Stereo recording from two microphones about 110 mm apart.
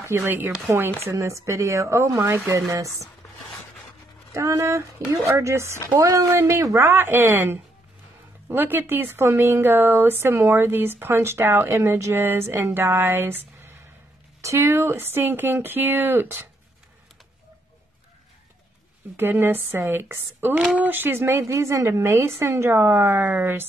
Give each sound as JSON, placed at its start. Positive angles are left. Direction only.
{"t": 0.0, "sound": "speech", "side_deg": -25}
{"t": 4.3, "sound": "speech", "side_deg": -25}
{"t": 19.1, "sound": "speech", "side_deg": -20}